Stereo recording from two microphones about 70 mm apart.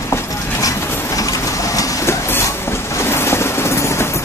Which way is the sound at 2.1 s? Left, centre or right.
Left.